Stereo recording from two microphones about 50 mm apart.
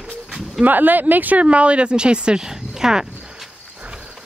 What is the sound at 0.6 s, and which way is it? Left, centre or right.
Speech, right.